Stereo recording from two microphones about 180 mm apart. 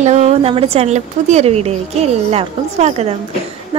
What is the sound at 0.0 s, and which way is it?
A woman's voice, 40° right (ahead or behind).